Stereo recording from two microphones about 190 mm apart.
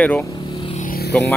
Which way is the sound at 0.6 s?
30° left (ahead or behind).